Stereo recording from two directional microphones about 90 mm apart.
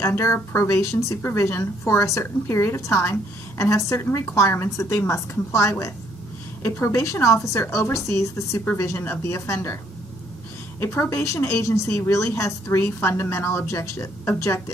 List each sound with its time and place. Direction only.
0.2 s a woman's voice: 30° left (ahead or behind)
10.8 s a woman's voice: 25° left (ahead or behind)